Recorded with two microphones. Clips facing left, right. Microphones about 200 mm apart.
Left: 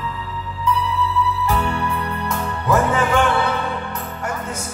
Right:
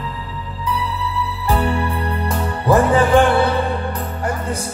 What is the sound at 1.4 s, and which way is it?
Music, 35° right (ahead or behind).